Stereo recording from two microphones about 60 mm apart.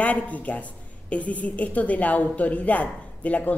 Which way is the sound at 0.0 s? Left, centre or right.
Left.